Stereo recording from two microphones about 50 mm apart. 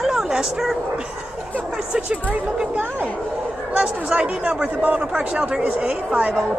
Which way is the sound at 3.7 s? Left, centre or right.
Right.